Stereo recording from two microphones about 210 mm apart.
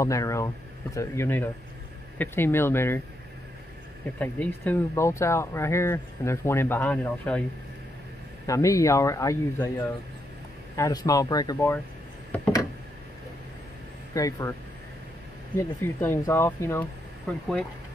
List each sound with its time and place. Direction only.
0.0 s speech: 15° left (ahead or behind)
4.2 s speech: 5° left (ahead or behind)
8.5 s speech: 15° left (ahead or behind)
14.1 s speech: 15° left (ahead or behind)
15.5 s speech: 10° left (ahead or behind)